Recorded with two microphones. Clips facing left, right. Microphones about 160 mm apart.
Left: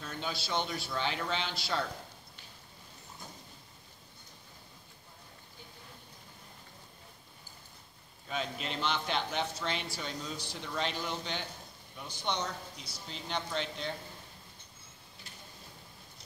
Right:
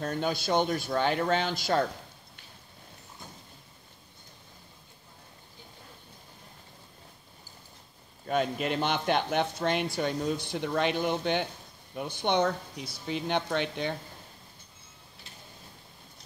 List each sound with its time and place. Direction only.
0.0 s speech: 50° right (ahead or behind)
8.3 s speech: 55° right (ahead or behind)